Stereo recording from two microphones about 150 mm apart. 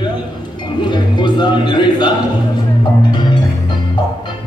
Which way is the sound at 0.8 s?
30° left (ahead or behind).